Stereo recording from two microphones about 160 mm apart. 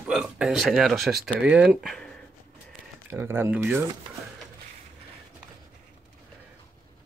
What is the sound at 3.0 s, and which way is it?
Speech, 15° right (ahead or behind).